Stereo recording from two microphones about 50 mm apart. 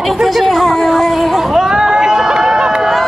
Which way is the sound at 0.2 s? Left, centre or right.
Centre.